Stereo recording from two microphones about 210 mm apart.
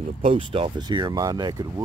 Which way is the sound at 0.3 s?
25° right (ahead or behind).